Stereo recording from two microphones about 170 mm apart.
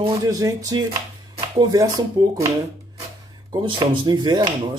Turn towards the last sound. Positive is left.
turn(degrees=-25)  # may be behind; listen again after turning